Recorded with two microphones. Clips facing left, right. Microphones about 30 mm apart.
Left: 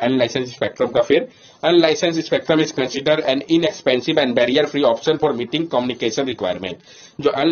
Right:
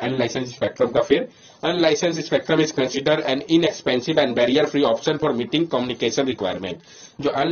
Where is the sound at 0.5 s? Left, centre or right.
Left.